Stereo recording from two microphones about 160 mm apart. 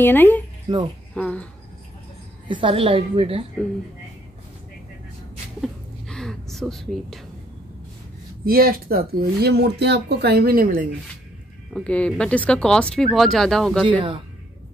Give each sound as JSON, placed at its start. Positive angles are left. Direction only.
{"t": 0.0, "sound": "speech", "side_deg": 10}
{"t": 0.7, "sound": "speech", "side_deg": -25}
{"t": 1.1, "sound": "speech", "side_deg": 10}
{"t": 2.4, "sound": "a woman's voice", "side_deg": -30}
{"t": 5.6, "sound": "whispering", "side_deg": 5}
{"t": 8.5, "sound": "speech", "side_deg": -70}
{"t": 11.7, "sound": "speech", "side_deg": 10}
{"t": 13.8, "sound": "a woman's voice", "side_deg": -30}